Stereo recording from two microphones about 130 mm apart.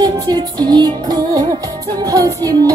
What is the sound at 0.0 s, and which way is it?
Music, 30° right (ahead or behind).